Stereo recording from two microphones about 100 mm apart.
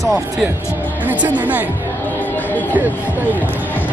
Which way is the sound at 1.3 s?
15° right (ahead or behind).